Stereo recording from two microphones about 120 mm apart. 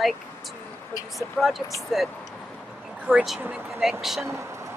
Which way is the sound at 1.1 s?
Centre (ahead or behind).